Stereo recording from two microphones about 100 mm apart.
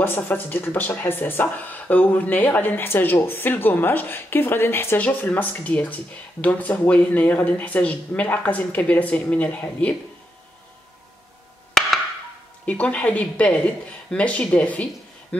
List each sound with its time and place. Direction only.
0.0 s speech: 20° left (ahead or behind)
12.6 s speech: 15° left (ahead or behind)